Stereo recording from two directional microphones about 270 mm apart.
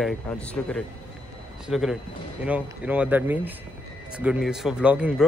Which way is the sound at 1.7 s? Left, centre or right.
Centre.